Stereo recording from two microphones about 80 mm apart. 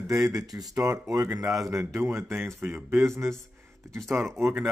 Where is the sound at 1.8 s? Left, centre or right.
Right.